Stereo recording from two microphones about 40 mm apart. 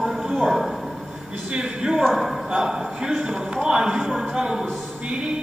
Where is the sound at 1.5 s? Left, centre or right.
Centre.